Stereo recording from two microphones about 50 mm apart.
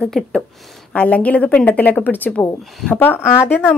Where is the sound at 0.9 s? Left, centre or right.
Left.